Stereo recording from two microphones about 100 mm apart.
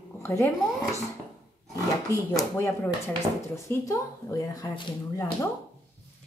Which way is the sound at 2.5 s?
25° left (ahead or behind).